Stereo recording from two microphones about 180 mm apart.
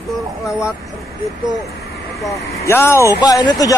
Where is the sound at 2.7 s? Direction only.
15° left (ahead or behind).